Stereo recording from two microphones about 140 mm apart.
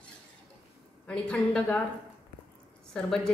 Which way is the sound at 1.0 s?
5° left (ahead or behind).